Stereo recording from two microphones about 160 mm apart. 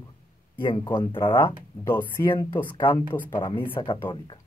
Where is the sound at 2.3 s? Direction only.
30° left (ahead or behind).